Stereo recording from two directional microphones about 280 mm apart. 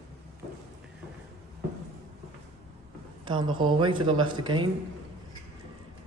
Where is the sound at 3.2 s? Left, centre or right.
Centre.